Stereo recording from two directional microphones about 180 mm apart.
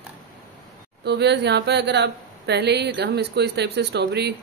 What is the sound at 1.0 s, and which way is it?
Speech, 70° right (ahead or behind).